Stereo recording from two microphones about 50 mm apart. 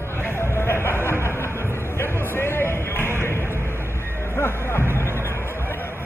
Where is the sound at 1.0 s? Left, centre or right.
Left.